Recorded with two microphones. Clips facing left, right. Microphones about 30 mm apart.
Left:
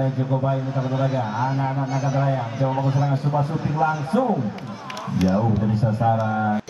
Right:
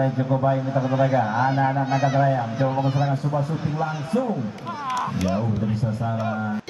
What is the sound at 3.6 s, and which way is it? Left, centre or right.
Speech, centre.